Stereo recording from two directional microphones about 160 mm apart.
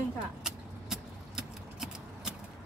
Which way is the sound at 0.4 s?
5° right (ahead or behind).